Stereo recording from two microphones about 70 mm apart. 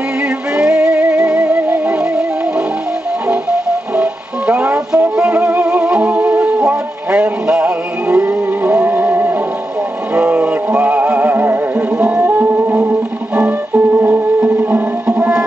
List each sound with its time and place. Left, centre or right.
0.6 s music: centre